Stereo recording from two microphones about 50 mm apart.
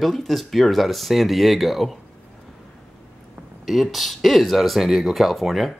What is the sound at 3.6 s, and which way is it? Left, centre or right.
Speech, centre.